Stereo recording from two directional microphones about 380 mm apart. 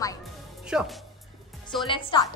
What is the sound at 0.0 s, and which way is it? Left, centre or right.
Music, centre.